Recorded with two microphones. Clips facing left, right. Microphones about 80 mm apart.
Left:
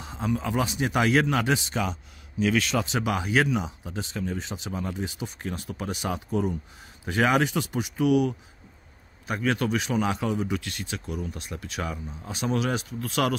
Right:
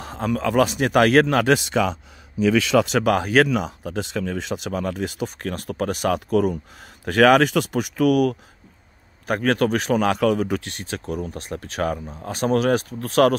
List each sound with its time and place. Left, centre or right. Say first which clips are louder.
0.0 s speech: right 5 dB; right
3.0 s speech: right 7 dB; right
10.6 s speech: right 4 dB; right